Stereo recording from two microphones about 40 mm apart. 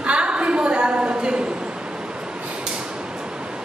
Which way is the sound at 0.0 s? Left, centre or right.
Right.